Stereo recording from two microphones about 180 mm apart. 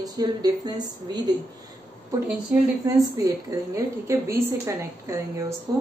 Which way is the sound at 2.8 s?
15° right (ahead or behind).